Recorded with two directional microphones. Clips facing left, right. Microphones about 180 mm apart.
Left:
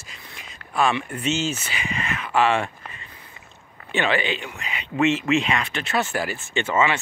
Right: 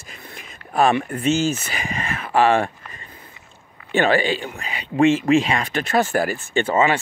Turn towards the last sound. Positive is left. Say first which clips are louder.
# right 3 dB
turn(degrees=-35)  # may be behind; listen again after turning